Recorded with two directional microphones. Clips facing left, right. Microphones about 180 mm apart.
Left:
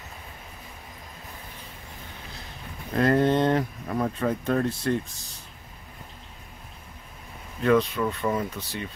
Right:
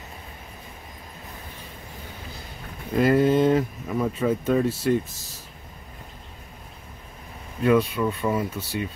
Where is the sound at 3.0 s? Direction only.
5° right (ahead or behind).